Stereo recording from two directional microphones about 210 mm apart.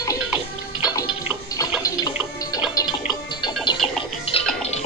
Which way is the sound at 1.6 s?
15° left (ahead or behind).